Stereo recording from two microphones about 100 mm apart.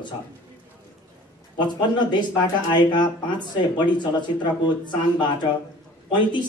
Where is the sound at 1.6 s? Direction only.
50° left (ahead or behind).